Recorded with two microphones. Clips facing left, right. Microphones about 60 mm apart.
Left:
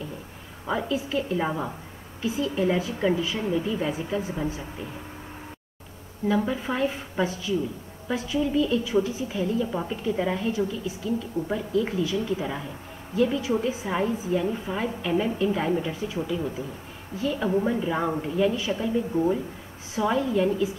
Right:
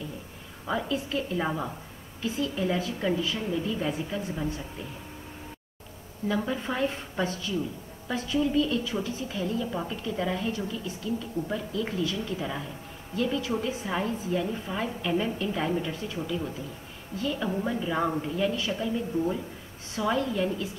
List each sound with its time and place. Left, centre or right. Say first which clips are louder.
0.7 s a woman's voice: left 2 dB; centre
6.2 s a woman's voice: left 4 dB; centre